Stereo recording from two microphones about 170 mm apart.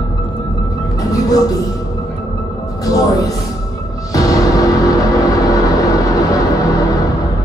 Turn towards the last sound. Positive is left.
turn(degrees=20)  # may be behind; listen again after turning